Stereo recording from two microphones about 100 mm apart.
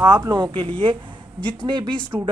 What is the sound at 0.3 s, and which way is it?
Speech, 55° right (ahead or behind).